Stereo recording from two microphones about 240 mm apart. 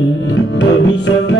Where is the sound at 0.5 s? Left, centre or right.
Left.